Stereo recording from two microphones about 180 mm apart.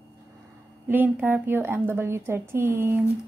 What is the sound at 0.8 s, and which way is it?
A woman's voice, 10° right (ahead or behind).